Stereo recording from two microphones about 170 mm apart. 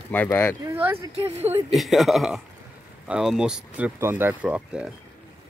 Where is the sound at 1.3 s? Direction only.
40° right (ahead or behind).